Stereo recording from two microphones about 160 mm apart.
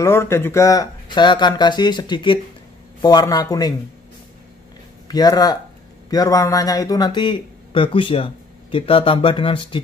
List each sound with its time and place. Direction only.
0.0 s speech: 15° left (ahead or behind)
5.0 s speech: 25° left (ahead or behind)